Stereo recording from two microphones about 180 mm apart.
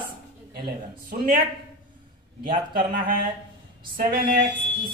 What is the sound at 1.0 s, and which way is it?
Speech, 50° right (ahead or behind).